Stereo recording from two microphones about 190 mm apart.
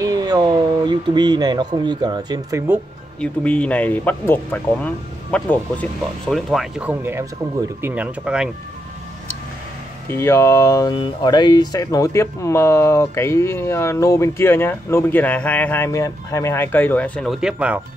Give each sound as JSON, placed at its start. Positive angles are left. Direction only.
{"t": 0.0, "sound": "speech", "side_deg": -20}
{"t": 3.2, "sound": "speech", "side_deg": 5}
{"t": 10.0, "sound": "speech", "side_deg": 10}